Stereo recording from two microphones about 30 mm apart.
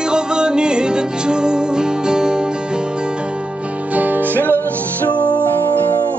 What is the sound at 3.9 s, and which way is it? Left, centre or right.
Music, right.